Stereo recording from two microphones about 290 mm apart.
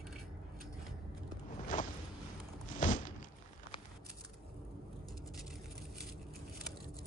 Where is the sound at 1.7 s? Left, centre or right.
Left.